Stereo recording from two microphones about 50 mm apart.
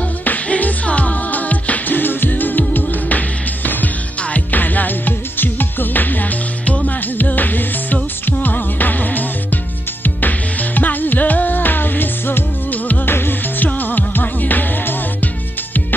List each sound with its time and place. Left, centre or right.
0.2 s music: left